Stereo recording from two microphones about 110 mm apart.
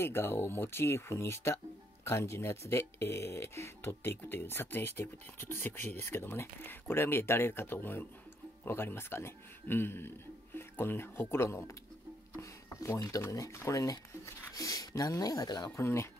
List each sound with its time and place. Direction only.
0.0 s a man's voice: 20° left (ahead or behind); by 15.7 s 35° left (ahead or behind)
15.7 s speech: 25° left (ahead or behind)